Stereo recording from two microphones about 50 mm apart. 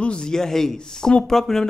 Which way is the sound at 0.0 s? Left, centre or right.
Centre.